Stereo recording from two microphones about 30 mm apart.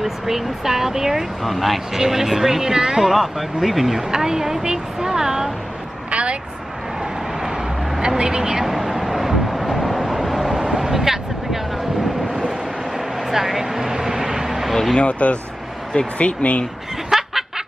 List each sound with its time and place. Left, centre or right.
0.0 s speech: centre
1.4 s speech: centre
6.0 s vehicle: right
8.2 s speech: right
8.6 s vehicle: centre
13.3 s speech: centre
13.7 s vehicle: right
14.7 s speech: centre
15.0 s speech: left
17.1 s snicker: centre